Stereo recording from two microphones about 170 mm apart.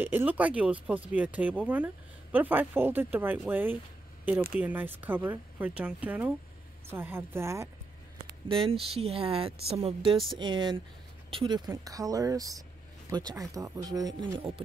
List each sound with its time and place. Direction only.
0.0 s speech: 10° right (ahead or behind)
8.2 s speech: 35° right (ahead or behind)
10.1 s speech: centre (ahead or behind)
10.4 s speech: 25° right (ahead or behind)